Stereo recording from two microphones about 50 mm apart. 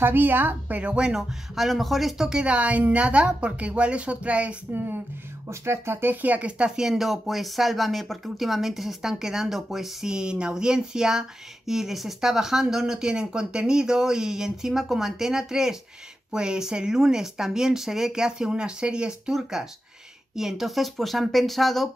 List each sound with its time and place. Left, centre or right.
0.0 s a woman's voice: right; by 1.2 s centre
1.5 s speech: centre
2.2 s a woman's voice: centre
4.7 s speech: right
5.5 s speech: right
6.2 s a woman's voice: right
6.8 s speech: centre
10.1 s speech: centre